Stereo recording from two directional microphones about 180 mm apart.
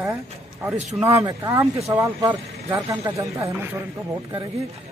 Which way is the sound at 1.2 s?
20° right (ahead or behind).